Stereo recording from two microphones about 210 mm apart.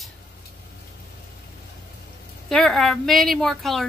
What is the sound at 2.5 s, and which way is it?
Speech, centre (ahead or behind).